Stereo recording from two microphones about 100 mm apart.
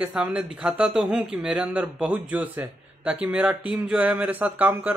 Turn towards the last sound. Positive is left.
turn(degrees=-15)  # may be behind; listen again after turning